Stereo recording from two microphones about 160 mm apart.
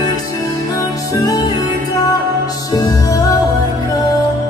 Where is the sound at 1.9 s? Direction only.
20° left (ahead or behind).